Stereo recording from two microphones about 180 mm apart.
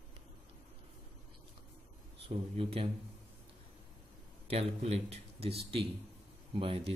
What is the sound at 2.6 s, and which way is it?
Speech, 30° right (ahead or behind).